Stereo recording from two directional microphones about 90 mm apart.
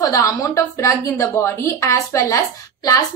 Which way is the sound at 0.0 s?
40° left (ahead or behind).